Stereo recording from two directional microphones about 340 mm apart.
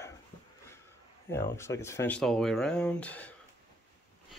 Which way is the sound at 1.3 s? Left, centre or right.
Centre.